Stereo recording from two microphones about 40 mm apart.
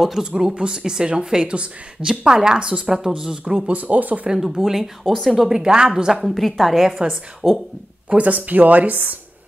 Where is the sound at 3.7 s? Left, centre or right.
Right.